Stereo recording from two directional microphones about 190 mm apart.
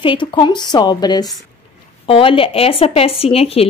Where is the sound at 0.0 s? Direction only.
25° left (ahead or behind).